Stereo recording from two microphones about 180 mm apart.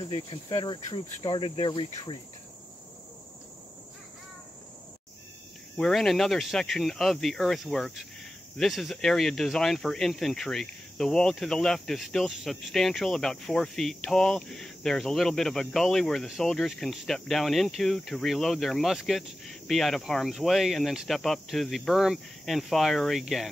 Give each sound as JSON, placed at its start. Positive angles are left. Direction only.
{"t": 0.1, "sound": "cricket", "side_deg": 30}
{"t": 5.8, "sound": "speech", "side_deg": 0}